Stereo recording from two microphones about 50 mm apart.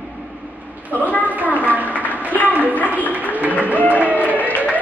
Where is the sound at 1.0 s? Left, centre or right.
Left.